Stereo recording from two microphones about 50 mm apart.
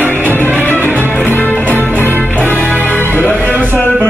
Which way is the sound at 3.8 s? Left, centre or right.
Left.